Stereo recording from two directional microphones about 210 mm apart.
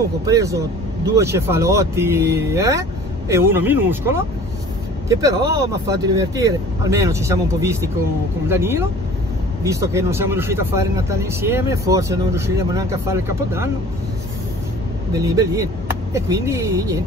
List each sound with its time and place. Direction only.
0.2 s speech: 15° right (ahead or behind)
15.1 s speech: 15° right (ahead or behind)